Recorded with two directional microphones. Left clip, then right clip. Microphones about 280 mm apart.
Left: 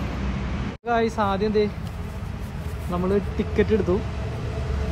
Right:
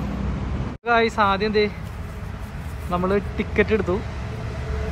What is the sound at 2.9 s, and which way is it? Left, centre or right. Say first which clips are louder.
Speech: right 3 dB; centre.